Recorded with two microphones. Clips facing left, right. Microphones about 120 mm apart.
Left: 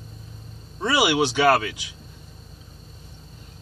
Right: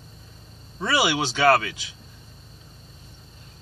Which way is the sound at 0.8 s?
15° left (ahead or behind).